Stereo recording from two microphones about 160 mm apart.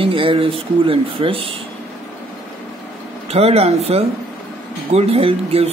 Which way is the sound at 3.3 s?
40° right (ahead or behind).